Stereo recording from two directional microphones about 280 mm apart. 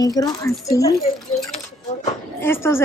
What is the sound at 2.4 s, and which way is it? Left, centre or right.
Speech, centre.